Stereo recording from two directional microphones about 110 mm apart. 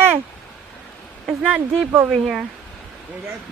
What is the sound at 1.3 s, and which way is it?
Speech, 10° right (ahead or behind).